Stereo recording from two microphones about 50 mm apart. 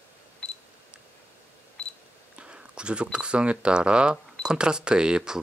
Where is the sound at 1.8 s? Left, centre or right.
Left.